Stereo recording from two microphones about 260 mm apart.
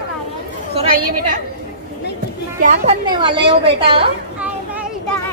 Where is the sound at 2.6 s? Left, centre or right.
Right.